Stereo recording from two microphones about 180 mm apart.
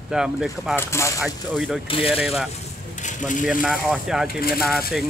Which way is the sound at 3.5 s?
5° right (ahead or behind).